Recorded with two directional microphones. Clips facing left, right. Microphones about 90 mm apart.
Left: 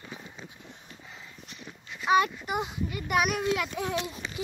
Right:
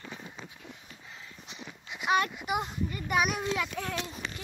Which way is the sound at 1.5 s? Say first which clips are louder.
Right 2 dB; 15° right (ahead or behind).